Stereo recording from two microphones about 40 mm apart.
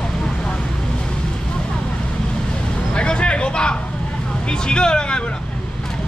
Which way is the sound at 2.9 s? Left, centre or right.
Left.